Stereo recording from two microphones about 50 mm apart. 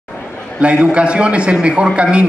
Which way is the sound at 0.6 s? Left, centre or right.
Right.